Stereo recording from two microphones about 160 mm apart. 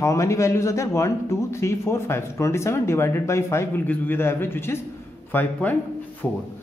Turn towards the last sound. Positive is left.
turn(degrees=10)  # may be behind; listen again after turning